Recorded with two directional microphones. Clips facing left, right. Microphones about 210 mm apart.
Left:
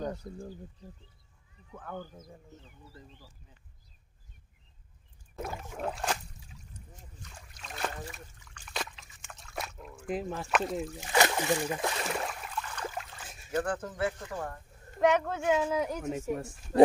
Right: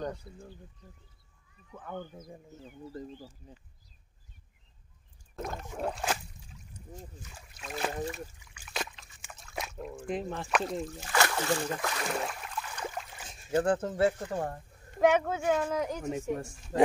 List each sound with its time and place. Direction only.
0.2 s speech: 40° left (ahead or behind)
1.9 s speech: centre (ahead or behind)
2.9 s speech: 40° right (ahead or behind)
5.3 s a sound: 5° left (ahead or behind)
7.2 s speech: 5° right (ahead or behind)
8.4 s trickle: 10° right (ahead or behind)
11.0 s speech: 20° left (ahead or behind)
12.1 s a sound: centre (ahead or behind)
13.5 s speech: 25° right (ahead or behind)
15.0 s speech: 5° right (ahead or behind)